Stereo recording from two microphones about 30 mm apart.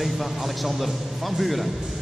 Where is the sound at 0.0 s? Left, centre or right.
Centre.